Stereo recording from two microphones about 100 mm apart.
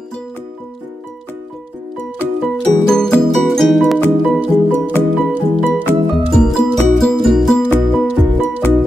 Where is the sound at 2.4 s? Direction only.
Centre (ahead or behind).